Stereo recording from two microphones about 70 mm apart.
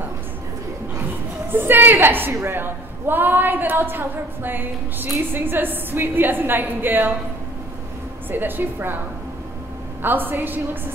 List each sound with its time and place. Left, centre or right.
1.5 s a woman's voice: right
8.3 s a woman's voice: right
10.0 s a woman's voice: right